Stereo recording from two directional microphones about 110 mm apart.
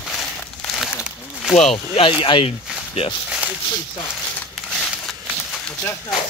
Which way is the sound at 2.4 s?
65° left (ahead or behind).